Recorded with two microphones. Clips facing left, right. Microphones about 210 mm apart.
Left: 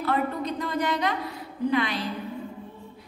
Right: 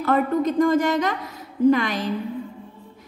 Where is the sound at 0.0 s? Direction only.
45° right (ahead or behind).